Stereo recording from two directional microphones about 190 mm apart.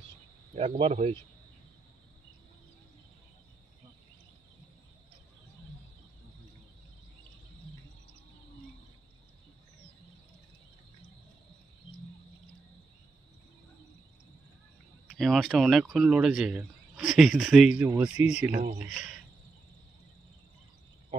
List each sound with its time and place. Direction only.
0.6 s speech: 30° right (ahead or behind)
15.0 s speech: centre (ahead or behind)